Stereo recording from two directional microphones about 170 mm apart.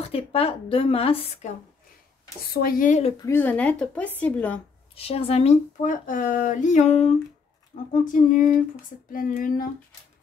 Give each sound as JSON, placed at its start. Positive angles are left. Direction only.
{"t": 0.0, "sound": "a woman's voice", "side_deg": 35}
{"t": 2.5, "sound": "speech", "side_deg": 60}
{"t": 3.2, "sound": "a woman's voice", "side_deg": 15}
{"t": 4.9, "sound": "speech", "side_deg": 35}